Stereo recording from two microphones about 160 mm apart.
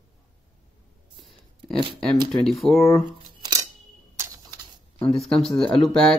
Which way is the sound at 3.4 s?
20° right (ahead or behind).